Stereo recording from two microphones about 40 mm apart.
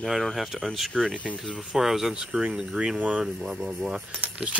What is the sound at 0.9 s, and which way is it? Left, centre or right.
Speech, left.